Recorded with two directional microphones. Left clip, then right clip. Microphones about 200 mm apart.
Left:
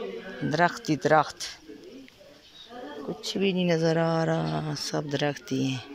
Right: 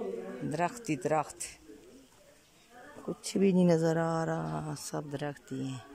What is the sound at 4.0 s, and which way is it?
Speech, 10° right (ahead or behind).